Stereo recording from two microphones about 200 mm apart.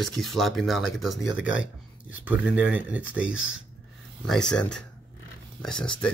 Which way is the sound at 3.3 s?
80° left.